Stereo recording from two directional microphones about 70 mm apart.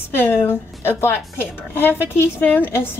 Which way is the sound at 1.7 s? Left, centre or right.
Left.